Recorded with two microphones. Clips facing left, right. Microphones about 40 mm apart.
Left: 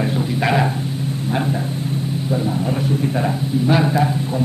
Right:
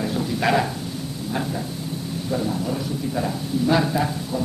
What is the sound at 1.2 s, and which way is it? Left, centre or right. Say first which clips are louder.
Speech: left 5 dB; left.